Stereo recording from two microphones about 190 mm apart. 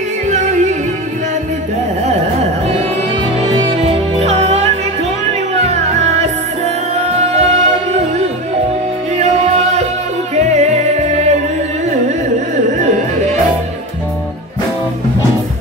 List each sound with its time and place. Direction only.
0.3 s music: 40° right (ahead or behind)
3.5 s music: 30° right (ahead or behind)